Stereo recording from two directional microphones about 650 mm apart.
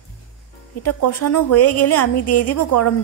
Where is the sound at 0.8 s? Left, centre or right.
Left.